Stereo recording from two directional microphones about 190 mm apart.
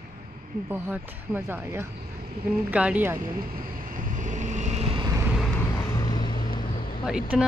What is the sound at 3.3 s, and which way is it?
Vehicle, 50° right (ahead or behind).